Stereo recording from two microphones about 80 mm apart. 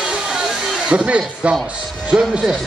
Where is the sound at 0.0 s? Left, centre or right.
Centre.